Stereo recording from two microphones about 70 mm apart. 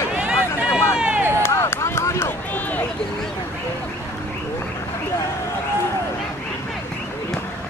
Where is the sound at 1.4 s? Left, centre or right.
Left.